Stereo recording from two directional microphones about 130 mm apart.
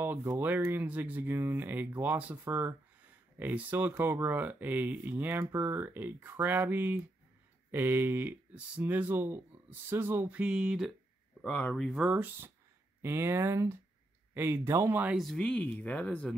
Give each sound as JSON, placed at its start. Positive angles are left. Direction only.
{"t": 0.0, "sound": "speech", "side_deg": -20}
{"t": 11.4, "sound": "speech", "side_deg": 10}
{"t": 15.1, "sound": "speech", "side_deg": 5}